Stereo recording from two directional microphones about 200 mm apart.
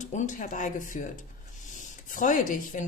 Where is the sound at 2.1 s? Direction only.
40° left (ahead or behind).